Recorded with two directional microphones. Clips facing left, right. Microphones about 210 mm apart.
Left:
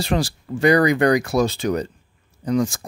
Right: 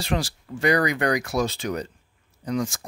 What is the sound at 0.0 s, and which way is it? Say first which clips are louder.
Speech: left 5 dB; 35° left (ahead or behind).